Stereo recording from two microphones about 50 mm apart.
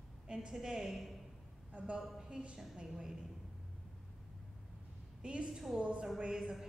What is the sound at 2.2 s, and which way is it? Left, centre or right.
Speech, right.